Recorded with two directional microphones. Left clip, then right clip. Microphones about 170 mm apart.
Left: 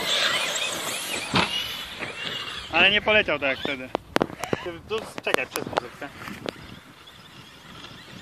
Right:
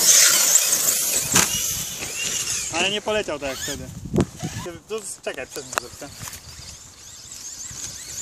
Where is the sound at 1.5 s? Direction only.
90° right; by 2.6 s 50° right (ahead or behind).